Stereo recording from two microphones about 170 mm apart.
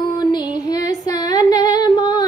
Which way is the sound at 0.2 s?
25° left (ahead or behind).